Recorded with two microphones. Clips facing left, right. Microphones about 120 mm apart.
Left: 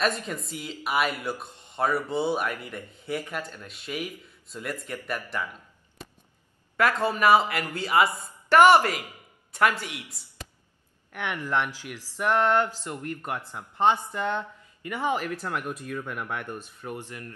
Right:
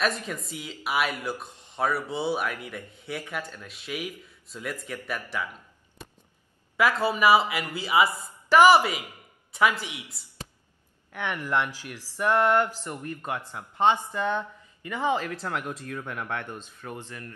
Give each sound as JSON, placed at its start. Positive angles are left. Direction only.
{"t": 0.0, "sound": "speech", "side_deg": 0}
{"t": 6.8, "sound": "a man's voice", "side_deg": -5}
{"t": 11.4, "sound": "a woman's voice", "side_deg": -15}
{"t": 11.8, "sound": "speech", "side_deg": 15}
{"t": 12.2, "sound": "a woman's voice", "side_deg": -15}
{"t": 14.9, "sound": "speech", "side_deg": 10}